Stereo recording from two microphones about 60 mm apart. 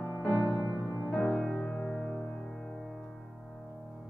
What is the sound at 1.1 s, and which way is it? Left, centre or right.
Music, centre.